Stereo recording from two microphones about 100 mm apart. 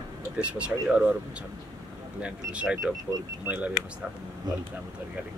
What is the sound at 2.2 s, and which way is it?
Speech, 10° right (ahead or behind).